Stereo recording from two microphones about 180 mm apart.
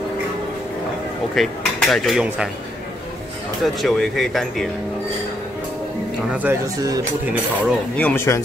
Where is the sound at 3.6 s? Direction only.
Centre (ahead or behind).